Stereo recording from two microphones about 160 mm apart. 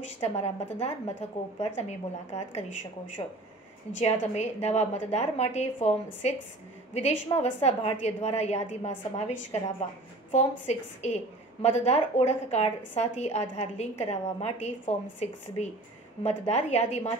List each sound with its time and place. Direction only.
0.2 s a woman's voice: 45° left (ahead or behind)
3.2 s a woman's voice: 35° left (ahead or behind)
4.0 s a woman's voice: 45° left (ahead or behind)